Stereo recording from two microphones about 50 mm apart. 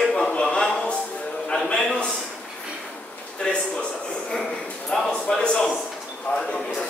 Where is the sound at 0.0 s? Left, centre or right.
Centre.